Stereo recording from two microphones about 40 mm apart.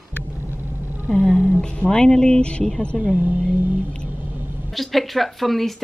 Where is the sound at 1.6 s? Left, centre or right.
Left.